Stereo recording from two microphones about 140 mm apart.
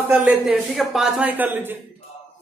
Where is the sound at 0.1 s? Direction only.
10° right (ahead or behind).